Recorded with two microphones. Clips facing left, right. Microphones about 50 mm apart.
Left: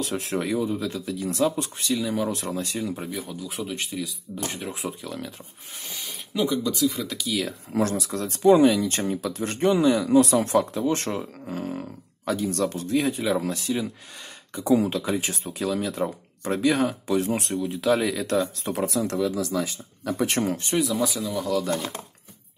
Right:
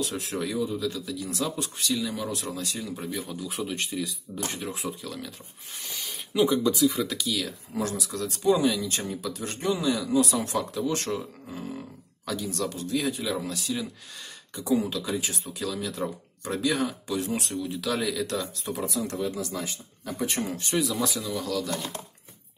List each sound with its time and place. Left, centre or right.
0.0 s speech: left
3.1 s speech: centre
4.7 s speech: left
6.3 s speech: centre
7.7 s speech: left
11.4 s speech: left
12.3 s speech: left
18.7 s speech: left
20.1 s speech: left
20.7 s speech: centre
21.4 s speech: left
21.6 s speech: left